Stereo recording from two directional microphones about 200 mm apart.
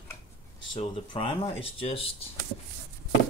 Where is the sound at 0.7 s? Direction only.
25° left (ahead or behind).